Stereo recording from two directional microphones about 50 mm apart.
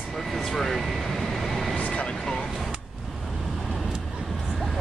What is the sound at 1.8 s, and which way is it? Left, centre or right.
Vehicle, left.